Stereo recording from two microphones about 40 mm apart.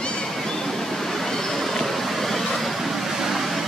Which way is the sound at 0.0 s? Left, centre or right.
Left.